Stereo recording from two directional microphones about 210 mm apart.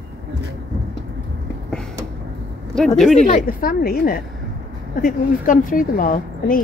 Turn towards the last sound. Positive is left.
turn(degrees=40)  # may be behind; listen again after turning